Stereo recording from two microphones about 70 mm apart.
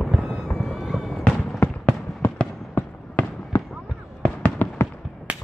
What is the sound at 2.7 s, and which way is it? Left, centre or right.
Fireworks, left.